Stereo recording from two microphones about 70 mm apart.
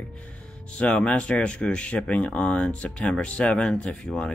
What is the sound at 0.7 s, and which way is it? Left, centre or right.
Speech, centre.